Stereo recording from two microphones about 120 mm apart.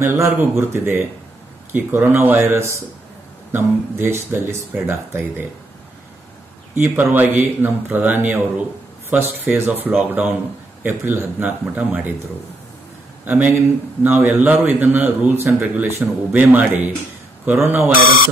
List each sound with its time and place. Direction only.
0.0 s speech: 20° right (ahead or behind)
6.7 s speech: 20° right (ahead or behind)
13.2 s speech: 15° right (ahead or behind)